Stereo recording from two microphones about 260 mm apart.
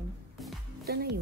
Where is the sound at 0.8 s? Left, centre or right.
Right.